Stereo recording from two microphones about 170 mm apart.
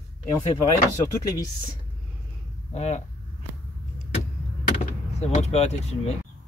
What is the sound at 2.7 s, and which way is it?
Speech, 40° left (ahead or behind).